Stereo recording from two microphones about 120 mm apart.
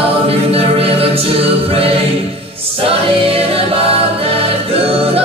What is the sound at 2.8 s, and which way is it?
Choir, 50° right (ahead or behind).